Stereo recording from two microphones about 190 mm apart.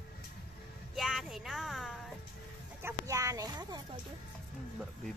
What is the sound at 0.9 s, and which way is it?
Speech, centre (ahead or behind).